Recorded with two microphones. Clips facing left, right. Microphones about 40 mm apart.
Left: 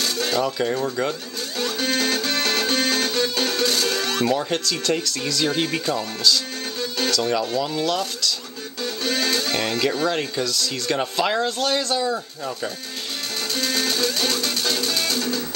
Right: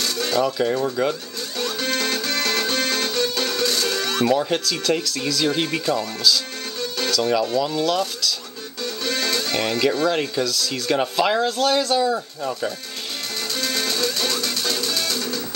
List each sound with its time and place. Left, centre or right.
0.0 s a sound: centre
0.4 s speech: centre
1.6 s music: left
4.3 s speech: centre
8.8 s music: left
9.5 s speech: centre
13.6 s music: centre